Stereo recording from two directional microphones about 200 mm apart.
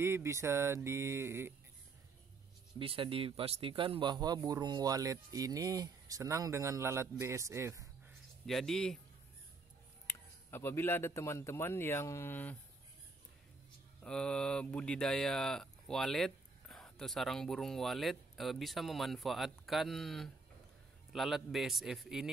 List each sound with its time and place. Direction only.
0.0 s a man's voice: 15° right (ahead or behind)
2.8 s a man's voice: 25° right (ahead or behind)
8.5 s speech: centre (ahead or behind)
10.0 s speech: 10° left (ahead or behind)
14.0 s speech: 5° left (ahead or behind)